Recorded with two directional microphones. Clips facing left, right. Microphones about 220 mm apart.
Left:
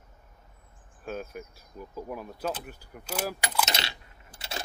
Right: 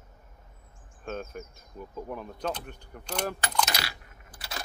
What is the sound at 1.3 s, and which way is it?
Speech, 5° left (ahead or behind).